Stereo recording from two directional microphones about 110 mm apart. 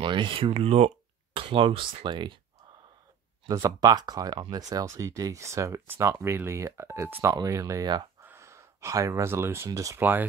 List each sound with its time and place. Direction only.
0.0 s speech: 50° right (ahead or behind)
3.6 s speech: 35° right (ahead or behind)
8.3 s gasp: 25° right (ahead or behind)
9.7 s speech: 30° right (ahead or behind)
9.9 s speech: 15° right (ahead or behind)